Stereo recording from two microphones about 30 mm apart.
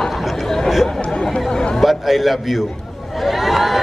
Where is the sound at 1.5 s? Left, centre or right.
Left.